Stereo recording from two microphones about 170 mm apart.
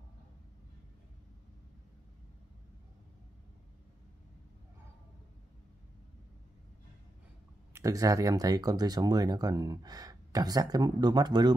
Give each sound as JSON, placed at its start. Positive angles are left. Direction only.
{"t": 7.7, "sound": "speech", "side_deg": -20}